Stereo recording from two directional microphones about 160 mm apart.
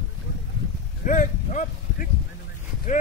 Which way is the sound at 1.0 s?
55° left (ahead or behind).